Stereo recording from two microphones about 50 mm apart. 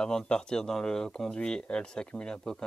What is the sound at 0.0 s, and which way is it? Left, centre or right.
Speech, centre.